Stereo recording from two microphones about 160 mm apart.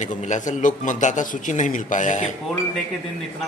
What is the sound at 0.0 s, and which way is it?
A man's voice, 50° left (ahead or behind).